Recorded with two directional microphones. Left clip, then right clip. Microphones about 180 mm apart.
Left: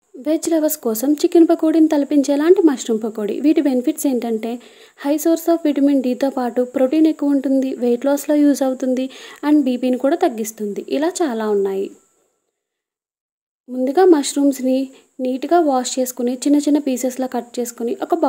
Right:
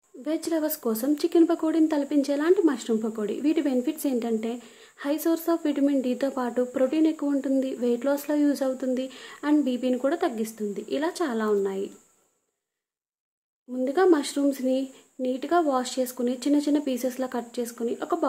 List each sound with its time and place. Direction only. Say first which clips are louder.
0.2 s speech: left 10 dB; 35° left (ahead or behind)
13.8 s speech: left 8 dB; 35° left (ahead or behind)